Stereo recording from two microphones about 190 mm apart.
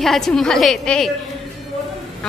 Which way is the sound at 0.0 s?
Centre (ahead or behind).